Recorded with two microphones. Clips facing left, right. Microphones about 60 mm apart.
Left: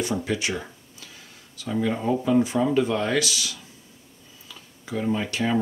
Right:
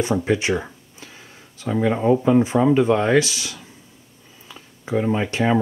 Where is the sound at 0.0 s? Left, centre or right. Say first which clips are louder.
Right 6 dB; right.